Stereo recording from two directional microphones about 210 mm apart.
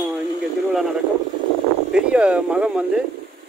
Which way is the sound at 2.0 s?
5° right (ahead or behind).